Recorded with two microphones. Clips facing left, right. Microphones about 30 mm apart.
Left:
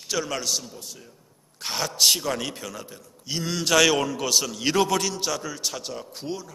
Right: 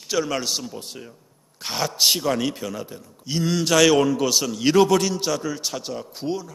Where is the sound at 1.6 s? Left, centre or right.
Centre.